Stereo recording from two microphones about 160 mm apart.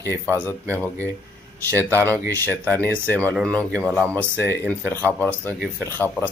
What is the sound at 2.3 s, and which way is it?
Speech, 10° left (ahead or behind).